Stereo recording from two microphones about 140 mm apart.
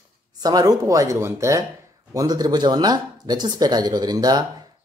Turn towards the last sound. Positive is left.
turn(degrees=-30)  # may be behind; listen again after turning